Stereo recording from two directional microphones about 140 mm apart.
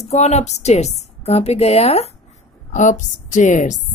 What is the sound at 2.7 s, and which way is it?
A woman's voice, 60° left (ahead or behind).